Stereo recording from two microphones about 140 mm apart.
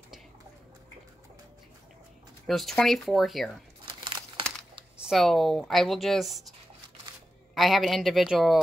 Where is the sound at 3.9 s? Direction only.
35° right (ahead or behind).